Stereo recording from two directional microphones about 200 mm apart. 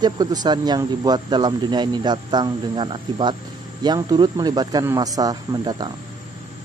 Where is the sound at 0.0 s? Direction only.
20° right (ahead or behind).